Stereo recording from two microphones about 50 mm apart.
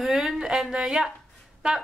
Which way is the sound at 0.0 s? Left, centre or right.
Centre.